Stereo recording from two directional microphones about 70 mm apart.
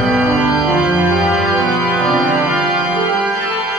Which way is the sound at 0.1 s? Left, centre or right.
Centre.